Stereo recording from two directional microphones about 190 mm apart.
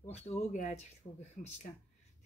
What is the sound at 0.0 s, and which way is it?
Speech, 40° left (ahead or behind).